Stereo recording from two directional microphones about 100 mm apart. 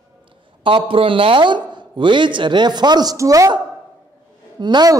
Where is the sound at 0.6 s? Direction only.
60° right (ahead or behind); by 3.5 s 35° right (ahead or behind).